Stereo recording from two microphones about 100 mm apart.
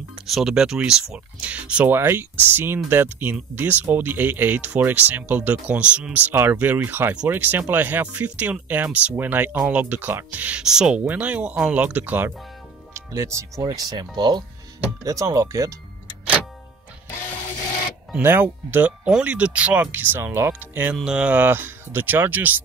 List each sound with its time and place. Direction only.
0.3 s speech: 5° right (ahead or behind)
12.9 s speech: 30° right (ahead or behind); by 14.4 s 45° right (ahead or behind)
15.0 s speech: 30° right (ahead or behind)
18.1 s speech: 20° right (ahead or behind)
20.9 s speech: 5° right (ahead or behind)